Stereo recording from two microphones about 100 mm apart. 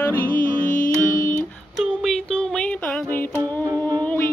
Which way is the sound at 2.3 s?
10° left (ahead or behind).